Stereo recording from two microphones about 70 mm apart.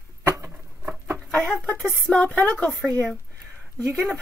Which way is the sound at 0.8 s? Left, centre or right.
Right.